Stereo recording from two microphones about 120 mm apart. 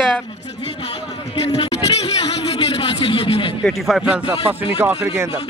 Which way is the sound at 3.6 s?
Centre (ahead or behind).